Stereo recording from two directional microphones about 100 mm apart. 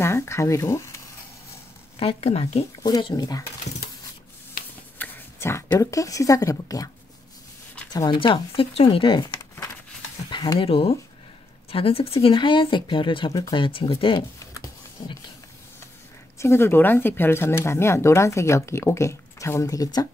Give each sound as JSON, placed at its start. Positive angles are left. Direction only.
{"t": 0.0, "sound": "speech", "side_deg": 25}
{"t": 2.0, "sound": "speech", "side_deg": 70}
{"t": 3.0, "sound": "speech", "side_deg": 50}
{"t": 4.9, "sound": "a sound", "side_deg": 20}
{"t": 5.8, "sound": "speech", "side_deg": 35}
{"t": 8.1, "sound": "speech", "side_deg": 55}
{"t": 10.3, "sound": "a sound", "side_deg": 40}
{"t": 10.6, "sound": "speech", "side_deg": 70}
{"t": 16.3, "sound": "speech", "side_deg": 25}